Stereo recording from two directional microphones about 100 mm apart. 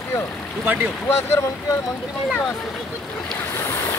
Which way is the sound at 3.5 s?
25° left (ahead or behind).